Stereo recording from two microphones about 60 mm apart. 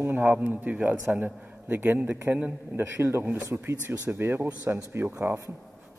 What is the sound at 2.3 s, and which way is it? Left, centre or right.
Speech, right.